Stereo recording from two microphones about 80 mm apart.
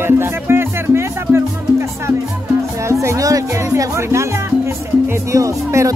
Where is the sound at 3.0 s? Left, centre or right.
Right.